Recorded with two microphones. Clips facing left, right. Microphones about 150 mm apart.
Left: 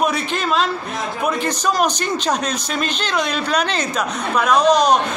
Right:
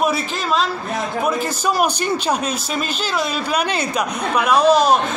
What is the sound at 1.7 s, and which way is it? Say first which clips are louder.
Speech: right 1 dB; 10° right (ahead or behind).